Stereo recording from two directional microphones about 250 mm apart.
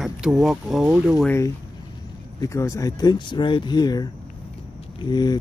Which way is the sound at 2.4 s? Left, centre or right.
Centre.